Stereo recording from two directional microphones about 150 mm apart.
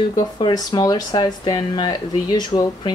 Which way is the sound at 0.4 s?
25° left (ahead or behind).